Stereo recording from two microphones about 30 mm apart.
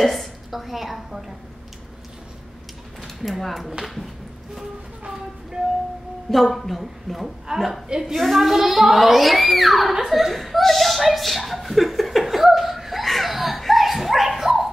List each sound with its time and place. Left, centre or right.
0.0 s a woman's voice: centre
3.2 s speech: centre
6.3 s speech: centre
7.5 s a woman's voice: centre
8.2 s speech: centre
12.2 s laughter: centre
13.3 s a sound: centre